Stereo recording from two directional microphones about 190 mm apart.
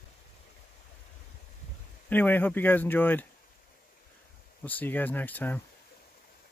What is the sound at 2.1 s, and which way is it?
Speech, 10° left (ahead or behind).